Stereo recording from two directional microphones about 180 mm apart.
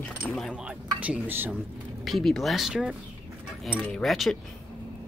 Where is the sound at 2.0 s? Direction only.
Centre (ahead or behind).